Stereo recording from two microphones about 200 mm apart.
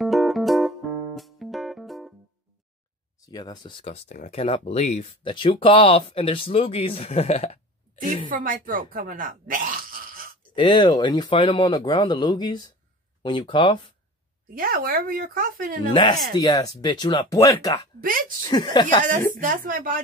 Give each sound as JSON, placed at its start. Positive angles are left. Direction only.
{"t": 0.0, "sound": "music", "side_deg": 0}
{"t": 3.3, "sound": "speech", "side_deg": 20}
{"t": 8.3, "sound": "speech", "side_deg": -45}
{"t": 10.5, "sound": "speech", "side_deg": 25}
{"t": 14.5, "sound": "speech", "side_deg": -45}
{"t": 15.9, "sound": "speech", "side_deg": 20}
{"t": 19.4, "sound": "speech", "side_deg": -40}